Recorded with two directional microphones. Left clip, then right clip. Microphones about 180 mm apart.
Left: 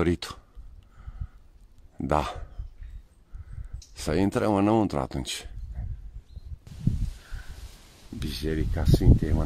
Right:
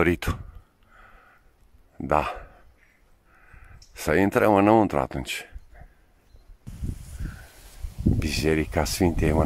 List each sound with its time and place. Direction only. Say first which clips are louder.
0.0 s speech: right 4 dB; 15° right (ahead or behind)
2.0 s a sound: right 3 dB; centre (ahead or behind)
4.0 s speech: right 5 dB; 15° right (ahead or behind)
8.2 s speech: right 6 dB; 35° right (ahead or behind)